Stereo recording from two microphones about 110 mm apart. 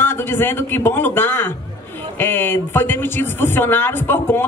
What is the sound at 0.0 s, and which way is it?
A man's voice, 20° left (ahead or behind).